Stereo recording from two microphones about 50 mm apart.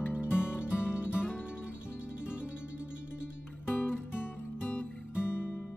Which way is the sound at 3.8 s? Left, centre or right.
Left.